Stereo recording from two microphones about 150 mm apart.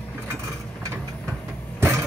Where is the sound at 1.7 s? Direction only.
15° right (ahead or behind).